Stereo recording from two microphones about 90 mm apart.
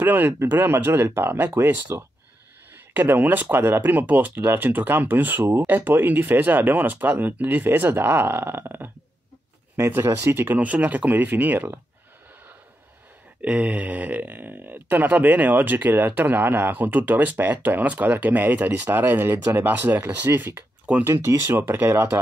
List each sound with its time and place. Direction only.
0.0 s speech: 20° right (ahead or behind)
5.4 s speech: 35° right (ahead or behind)
5.7 s speech: 20° right (ahead or behind)
13.4 s speech: 15° right (ahead or behind)